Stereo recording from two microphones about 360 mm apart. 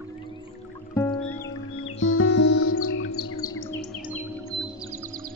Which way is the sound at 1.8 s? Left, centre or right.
Left.